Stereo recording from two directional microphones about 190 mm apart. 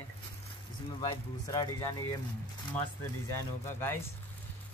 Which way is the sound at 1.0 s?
20° left (ahead or behind).